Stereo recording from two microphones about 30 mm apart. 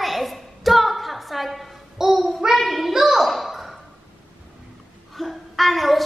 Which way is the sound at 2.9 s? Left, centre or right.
Centre.